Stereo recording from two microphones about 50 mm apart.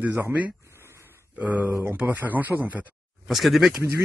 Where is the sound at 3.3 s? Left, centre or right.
Centre.